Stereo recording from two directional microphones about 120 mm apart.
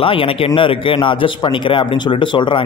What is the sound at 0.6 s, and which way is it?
A man's voice, 45° left (ahead or behind).